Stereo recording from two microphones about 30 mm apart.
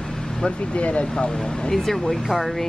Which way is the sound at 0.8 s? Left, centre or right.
Left.